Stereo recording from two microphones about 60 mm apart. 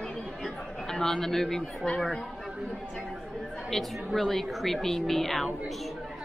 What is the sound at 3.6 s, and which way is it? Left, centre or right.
A woman's voice, centre.